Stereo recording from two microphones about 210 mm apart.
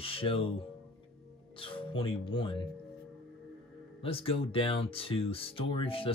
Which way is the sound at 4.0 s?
25° left (ahead or behind).